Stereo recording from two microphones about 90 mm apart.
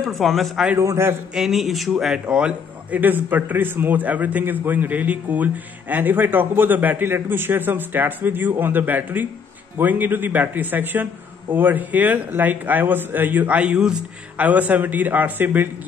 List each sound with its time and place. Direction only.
0.0 s a man's voice: centre (ahead or behind)
0.7 s a man's voice: 30° right (ahead or behind)
1.3 s a man's voice: 5° right (ahead or behind); by 15.7 s 20° right (ahead or behind)